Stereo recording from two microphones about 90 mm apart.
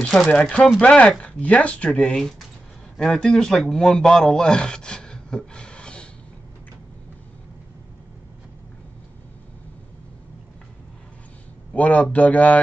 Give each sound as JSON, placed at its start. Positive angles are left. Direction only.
{"t": 0.0, "sound": "speech", "side_deg": 5}
{"t": 11.7, "sound": "speech", "side_deg": 15}